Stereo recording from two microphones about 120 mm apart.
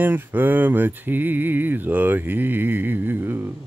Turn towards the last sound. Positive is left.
turn(degrees=-15)  # may be behind; listen again after turning